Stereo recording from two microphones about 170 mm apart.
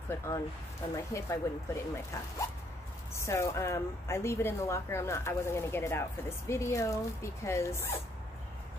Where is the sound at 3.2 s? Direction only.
15° left (ahead or behind).